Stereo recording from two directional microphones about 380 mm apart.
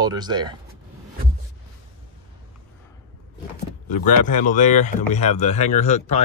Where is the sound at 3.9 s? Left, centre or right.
Centre.